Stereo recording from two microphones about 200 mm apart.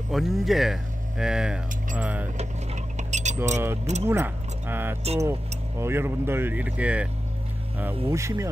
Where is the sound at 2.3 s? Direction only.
35° right (ahead or behind).